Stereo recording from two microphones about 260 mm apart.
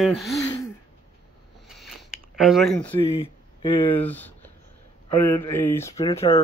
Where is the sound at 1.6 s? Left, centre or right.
Centre.